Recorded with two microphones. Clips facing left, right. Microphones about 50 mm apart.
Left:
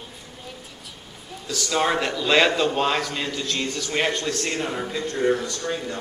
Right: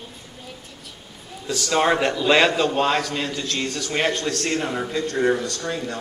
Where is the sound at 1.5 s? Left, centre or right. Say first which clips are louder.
Right 3 dB; centre.